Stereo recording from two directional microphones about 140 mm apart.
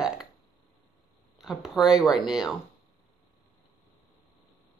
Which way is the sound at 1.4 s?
5° right (ahead or behind).